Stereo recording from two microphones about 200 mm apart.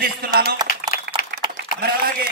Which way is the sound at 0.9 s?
45° left (ahead or behind).